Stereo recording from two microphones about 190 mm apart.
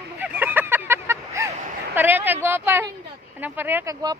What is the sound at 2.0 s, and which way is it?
Speech, 10° right (ahead or behind).